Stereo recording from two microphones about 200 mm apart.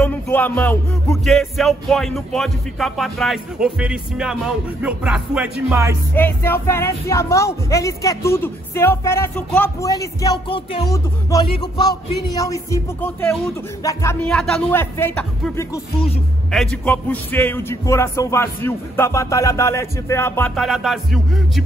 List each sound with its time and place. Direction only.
0.0 s music: 10° left (ahead or behind); by 5.9 s 15° right (ahead or behind)
6.1 s speech: 10° left (ahead or behind)